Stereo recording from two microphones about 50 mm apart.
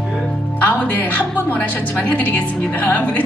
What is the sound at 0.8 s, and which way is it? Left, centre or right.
A woman's voice, left.